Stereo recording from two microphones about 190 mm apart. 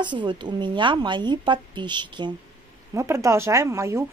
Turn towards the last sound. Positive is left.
turn(degrees=-15)  # may be behind; listen again after turning